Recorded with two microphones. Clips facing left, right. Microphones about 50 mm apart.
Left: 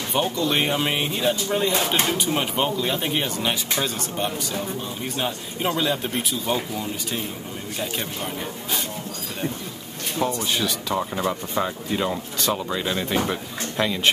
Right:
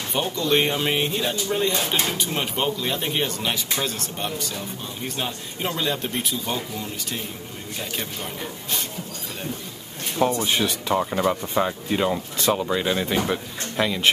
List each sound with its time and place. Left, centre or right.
0.1 s speech: centre
10.1 s speech: right
11.0 s speech: centre